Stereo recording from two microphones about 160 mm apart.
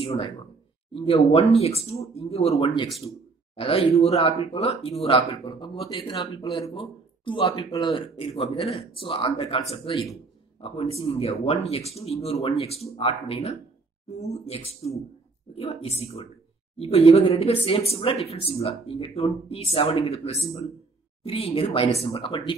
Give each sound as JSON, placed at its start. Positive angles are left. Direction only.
{"t": 0.0, "sound": "speech", "side_deg": 35}